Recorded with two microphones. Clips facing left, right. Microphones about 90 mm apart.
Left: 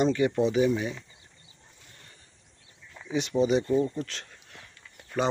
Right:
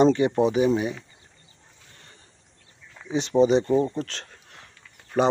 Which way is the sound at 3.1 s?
30° right (ahead or behind).